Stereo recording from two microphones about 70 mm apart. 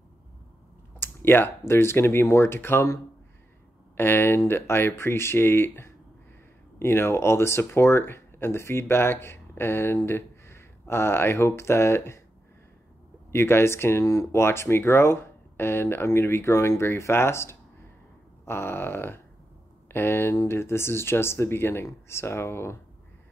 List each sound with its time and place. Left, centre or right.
0.9 s a sound: left
1.7 s speech: left
3.9 s speech: left
13.3 s speech: left